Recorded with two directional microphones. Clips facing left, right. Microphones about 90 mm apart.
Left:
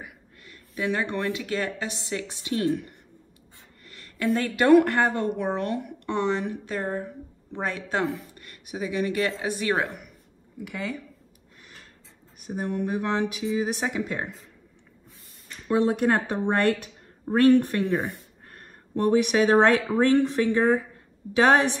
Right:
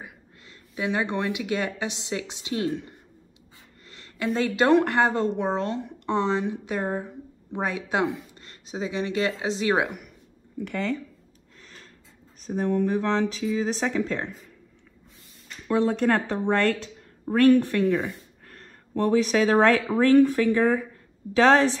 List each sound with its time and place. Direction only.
0.0 s speech: 20° right (ahead or behind)
9.8 s speech: 5° right (ahead or behind)
10.6 s speech: 10° left (ahead or behind)
12.4 s speech: 10° left (ahead or behind)
15.7 s a woman's voice: 20° left (ahead or behind)